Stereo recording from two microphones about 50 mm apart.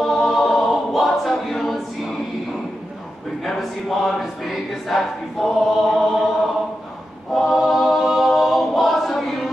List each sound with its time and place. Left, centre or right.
0.0 s a capella: centre
3.4 s choir: centre
7.3 s a capella: centre